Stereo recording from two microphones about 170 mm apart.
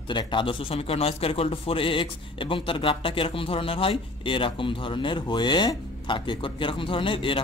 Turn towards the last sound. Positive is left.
turn(degrees=30)  # may be behind; listen again after turning